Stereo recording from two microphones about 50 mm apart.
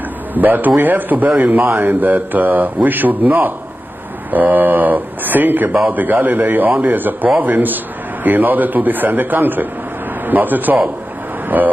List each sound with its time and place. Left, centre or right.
0.3 s a man's voice: right